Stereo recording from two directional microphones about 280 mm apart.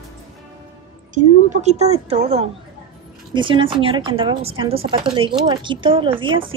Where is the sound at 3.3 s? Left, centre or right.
Centre.